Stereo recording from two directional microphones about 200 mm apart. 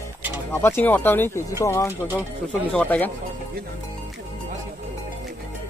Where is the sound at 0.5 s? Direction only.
10° left (ahead or behind).